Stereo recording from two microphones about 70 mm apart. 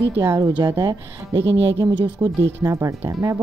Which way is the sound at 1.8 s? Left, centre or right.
Right.